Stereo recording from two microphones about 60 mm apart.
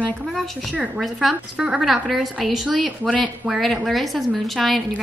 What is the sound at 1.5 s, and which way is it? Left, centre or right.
Speech, centre.